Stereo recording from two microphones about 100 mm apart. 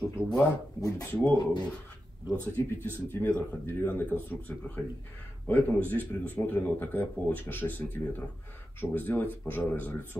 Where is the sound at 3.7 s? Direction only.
20° left (ahead or behind).